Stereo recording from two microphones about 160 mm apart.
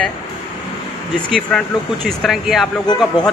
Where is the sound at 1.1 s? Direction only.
5° left (ahead or behind).